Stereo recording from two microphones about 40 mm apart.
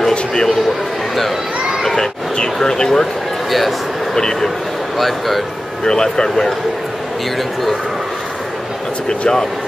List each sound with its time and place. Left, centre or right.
2.3 s a sound: centre
3.4 s a sound: centre
4.2 s speech: centre
4.9 s speech: centre
5.9 s speech: centre
9.2 s speech: centre